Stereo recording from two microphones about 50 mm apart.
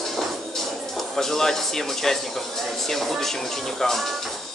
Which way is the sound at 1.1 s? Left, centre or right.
Centre.